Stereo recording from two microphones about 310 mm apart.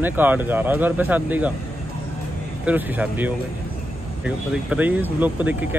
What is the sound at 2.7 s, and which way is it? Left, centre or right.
Speech, centre.